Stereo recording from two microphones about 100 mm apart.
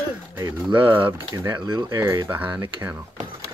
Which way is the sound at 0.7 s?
20° right (ahead or behind).